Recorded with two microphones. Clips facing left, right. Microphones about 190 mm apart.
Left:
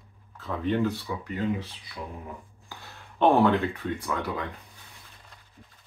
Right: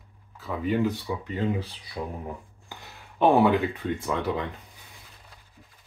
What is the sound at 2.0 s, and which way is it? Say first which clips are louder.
Speech: right 5 dB; 35° right (ahead or behind).